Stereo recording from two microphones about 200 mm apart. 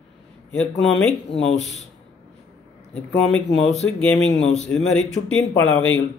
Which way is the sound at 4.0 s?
5° left (ahead or behind).